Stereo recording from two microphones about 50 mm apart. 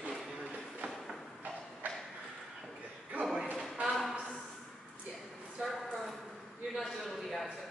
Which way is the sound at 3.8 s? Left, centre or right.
Centre.